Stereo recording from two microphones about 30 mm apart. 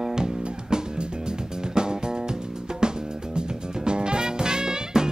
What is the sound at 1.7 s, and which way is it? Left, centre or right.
Music, right.